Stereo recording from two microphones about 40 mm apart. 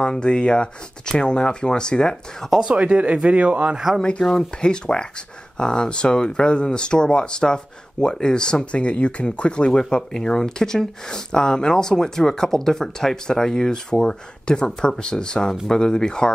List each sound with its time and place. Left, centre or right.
0.0 s speech: left
2.7 s speech: right
3.7 s speech: centre
4.2 s speech: centre
4.6 s speech: left